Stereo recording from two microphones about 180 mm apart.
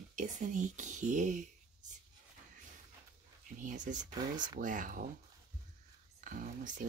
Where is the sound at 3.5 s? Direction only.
45° right (ahead or behind).